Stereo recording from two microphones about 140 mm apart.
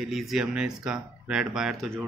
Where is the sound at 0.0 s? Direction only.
Centre (ahead or behind).